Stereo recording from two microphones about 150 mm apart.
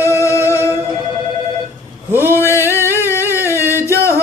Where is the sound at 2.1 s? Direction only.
15° right (ahead or behind).